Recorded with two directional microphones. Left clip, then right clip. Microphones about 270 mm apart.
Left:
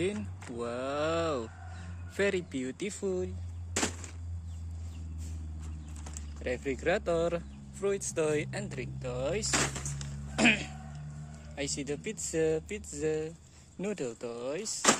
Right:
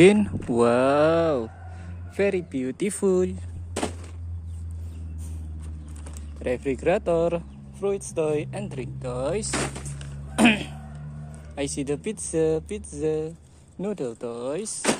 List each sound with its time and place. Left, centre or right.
0.0 s speech: right; by 2.9 s centre
2.9 s speech: right
6.4 s speech: centre
9.6 s speech: centre
10.3 s a sound: centre
11.5 s speech: centre